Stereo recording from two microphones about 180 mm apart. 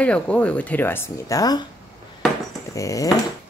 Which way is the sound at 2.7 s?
20° left (ahead or behind).